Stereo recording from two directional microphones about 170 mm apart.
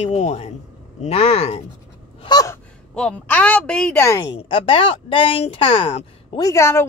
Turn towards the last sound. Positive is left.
turn(degrees=15)  # may be behind; listen again after turning